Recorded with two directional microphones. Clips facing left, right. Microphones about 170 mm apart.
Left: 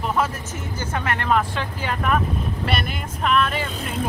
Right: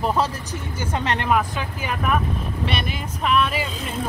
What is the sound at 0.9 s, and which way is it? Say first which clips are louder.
Speech: right 2 dB; 20° right (ahead or behind).